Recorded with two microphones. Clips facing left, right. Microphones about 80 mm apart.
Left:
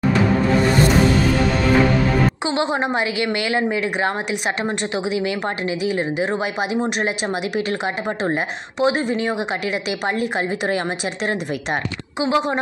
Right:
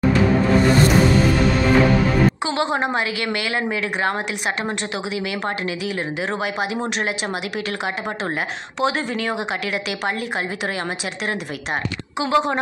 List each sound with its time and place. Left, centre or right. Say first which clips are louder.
2.5 s speech: left 1 dB; centre
3.4 s speech: left 3 dB; left
5.9 s speech: left 4 dB; left
8.8 s speech: left 3 dB; left